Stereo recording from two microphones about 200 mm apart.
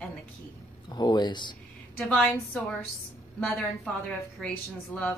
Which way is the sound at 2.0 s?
5° left (ahead or behind).